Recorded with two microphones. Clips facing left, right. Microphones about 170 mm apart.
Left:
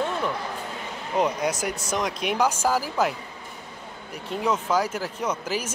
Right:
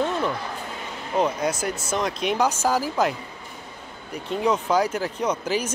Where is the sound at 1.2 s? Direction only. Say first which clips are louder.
Right 1 dB; 15° left (ahead or behind).